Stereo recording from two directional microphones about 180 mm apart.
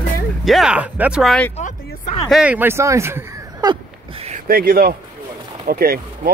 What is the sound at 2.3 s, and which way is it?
Speech, 5° right (ahead or behind).